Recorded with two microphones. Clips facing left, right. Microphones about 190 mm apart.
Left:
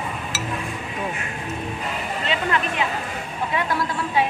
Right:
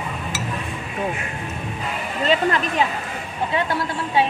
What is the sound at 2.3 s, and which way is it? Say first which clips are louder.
Speech: right 5 dB; 40° right (ahead or behind).